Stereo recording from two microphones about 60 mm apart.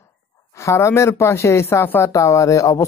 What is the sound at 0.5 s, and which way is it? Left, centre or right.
Speech, left.